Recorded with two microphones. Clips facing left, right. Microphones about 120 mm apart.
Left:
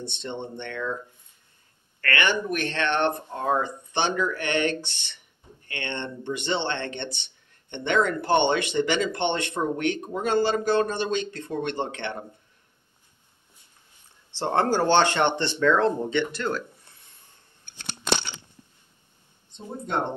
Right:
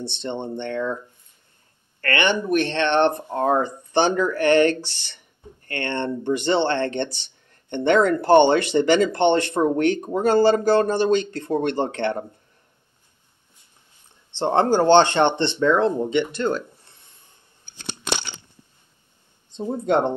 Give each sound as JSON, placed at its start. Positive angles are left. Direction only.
{"t": 0.1, "sound": "speech", "side_deg": -30}
{"t": 2.0, "sound": "speech", "side_deg": -30}
{"t": 14.3, "sound": "speech", "side_deg": -25}
{"t": 19.5, "sound": "a sound", "side_deg": -90}